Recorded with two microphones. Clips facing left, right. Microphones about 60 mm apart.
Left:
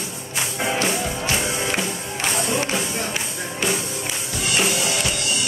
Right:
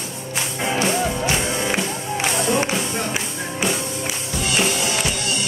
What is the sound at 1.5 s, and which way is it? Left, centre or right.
Music, centre.